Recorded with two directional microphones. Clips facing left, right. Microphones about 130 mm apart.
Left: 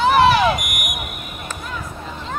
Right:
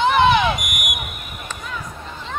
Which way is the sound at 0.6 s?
Centre (ahead or behind).